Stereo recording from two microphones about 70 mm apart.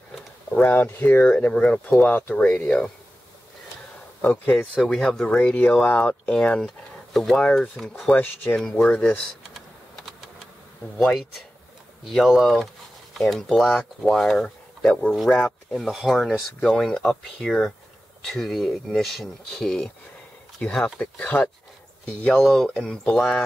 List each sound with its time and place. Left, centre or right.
0.7 s speech: left
4.2 s speech: left
4.8 s speech: centre
8.1 s speech: left
12.0 s speech: centre
14.8 s speech: centre
15.2 s speech: centre
20.6 s speech: centre
22.4 s speech: centre
23.1 s speech: centre